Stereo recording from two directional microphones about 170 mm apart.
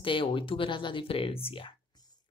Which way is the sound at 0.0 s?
30° left (ahead or behind).